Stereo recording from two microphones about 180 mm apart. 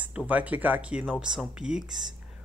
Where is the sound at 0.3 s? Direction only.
10° right (ahead or behind).